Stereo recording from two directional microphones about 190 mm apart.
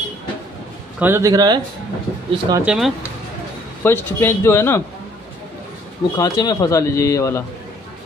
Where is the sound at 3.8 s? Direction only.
10° left (ahead or behind).